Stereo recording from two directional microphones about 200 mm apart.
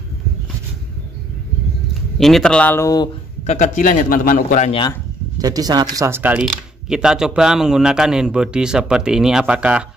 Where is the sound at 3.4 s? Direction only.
35° left (ahead or behind).